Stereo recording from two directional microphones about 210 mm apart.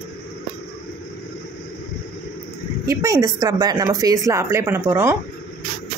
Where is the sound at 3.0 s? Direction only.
15° right (ahead or behind).